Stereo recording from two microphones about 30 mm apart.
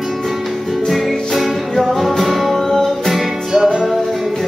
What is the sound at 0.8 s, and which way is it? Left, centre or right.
Music, centre.